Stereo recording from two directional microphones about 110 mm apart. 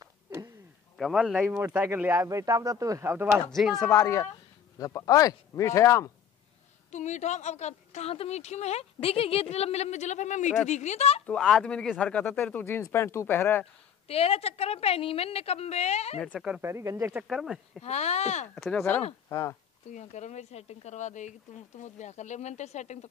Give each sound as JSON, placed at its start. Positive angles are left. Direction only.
{"t": 0.9, "sound": "speech", "side_deg": 0}
{"t": 2.2, "sound": "speech", "side_deg": -30}
{"t": 3.4, "sound": "speech", "side_deg": 0}
{"t": 3.9, "sound": "speech", "side_deg": 25}
{"t": 6.9, "sound": "a woman's voice", "side_deg": 90}
{"t": 11.3, "sound": "speech", "side_deg": 5}
{"t": 14.0, "sound": "a woman's voice", "side_deg": 65}
{"t": 16.3, "sound": "speech", "side_deg": -5}
{"t": 16.6, "sound": "speech", "side_deg": -25}
{"t": 17.2, "sound": "speech", "side_deg": -5}
{"t": 17.8, "sound": "speech", "side_deg": 80}
{"t": 18.5, "sound": "speech", "side_deg": 5}
{"t": 19.2, "sound": "speech", "side_deg": 30}
{"t": 19.9, "sound": "a woman's voice", "side_deg": 90}